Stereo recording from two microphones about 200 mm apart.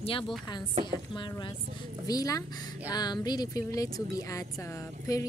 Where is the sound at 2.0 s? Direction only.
20° left (ahead or behind).